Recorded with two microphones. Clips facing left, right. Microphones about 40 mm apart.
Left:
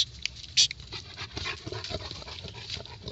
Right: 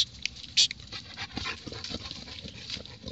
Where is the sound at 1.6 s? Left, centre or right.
Left.